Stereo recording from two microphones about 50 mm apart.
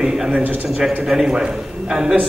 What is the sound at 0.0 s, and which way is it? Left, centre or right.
A man's voice, centre.